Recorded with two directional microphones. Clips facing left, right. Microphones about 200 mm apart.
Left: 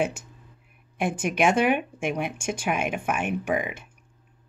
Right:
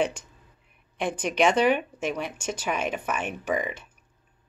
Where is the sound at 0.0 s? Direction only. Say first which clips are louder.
Even; 45° left (ahead or behind).